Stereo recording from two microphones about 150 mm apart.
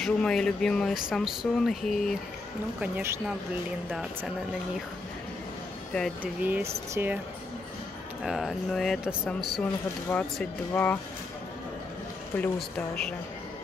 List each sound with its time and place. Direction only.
0.0 s speech: 5° left (ahead or behind)
2.8 s speech: 15° right (ahead or behind)
6.2 s speech: 10° right (ahead or behind)
8.2 s speech: centre (ahead or behind)
12.4 s speech: 5° left (ahead or behind)